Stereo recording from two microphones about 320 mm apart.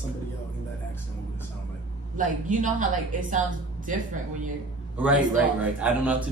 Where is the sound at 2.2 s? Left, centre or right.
Right.